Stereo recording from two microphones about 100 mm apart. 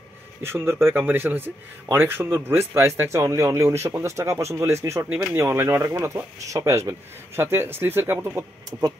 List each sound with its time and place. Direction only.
0.4 s speech: 25° right (ahead or behind)